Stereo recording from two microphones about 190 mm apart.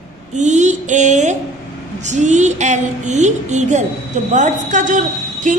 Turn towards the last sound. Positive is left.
turn(degrees=-40)  # may be behind; listen again after turning